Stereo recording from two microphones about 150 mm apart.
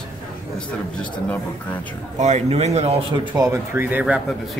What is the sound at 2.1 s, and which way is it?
Speech, 50° right (ahead or behind).